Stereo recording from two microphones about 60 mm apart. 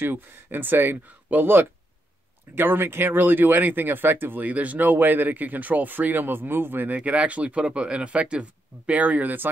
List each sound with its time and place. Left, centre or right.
0.0 s speech: right
7.0 s speech: centre